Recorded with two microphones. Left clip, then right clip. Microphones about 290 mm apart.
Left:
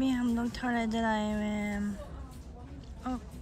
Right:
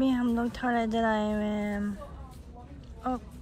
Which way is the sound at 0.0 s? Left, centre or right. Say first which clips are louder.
Right 3 dB; centre.